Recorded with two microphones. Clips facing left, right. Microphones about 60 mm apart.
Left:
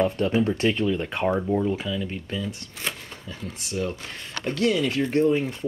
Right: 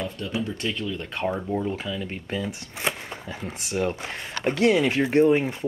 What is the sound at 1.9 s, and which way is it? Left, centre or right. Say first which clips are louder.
Speech: left 2 dB; centre.